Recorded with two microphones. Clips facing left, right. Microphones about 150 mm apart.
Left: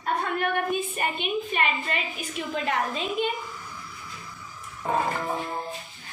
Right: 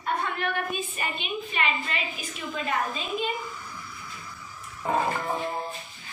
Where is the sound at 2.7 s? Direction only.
70° left (ahead or behind).